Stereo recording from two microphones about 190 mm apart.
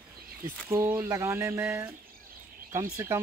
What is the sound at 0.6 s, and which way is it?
Speech, 10° right (ahead or behind).